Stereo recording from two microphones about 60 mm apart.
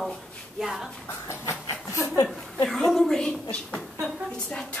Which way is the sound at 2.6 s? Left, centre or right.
Centre.